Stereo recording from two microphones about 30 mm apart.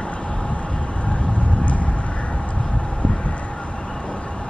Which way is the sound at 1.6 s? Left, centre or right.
Left.